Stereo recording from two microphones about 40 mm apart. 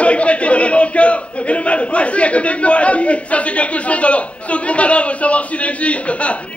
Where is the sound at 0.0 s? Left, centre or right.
Left.